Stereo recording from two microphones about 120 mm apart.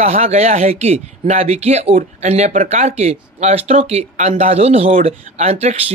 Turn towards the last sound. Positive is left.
turn(degrees=-65)  # may be behind; listen again after turning